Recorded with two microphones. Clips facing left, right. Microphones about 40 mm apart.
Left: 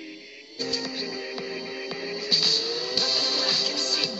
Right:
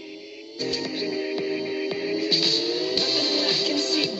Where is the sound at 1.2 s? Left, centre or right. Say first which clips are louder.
Right 7 dB; centre.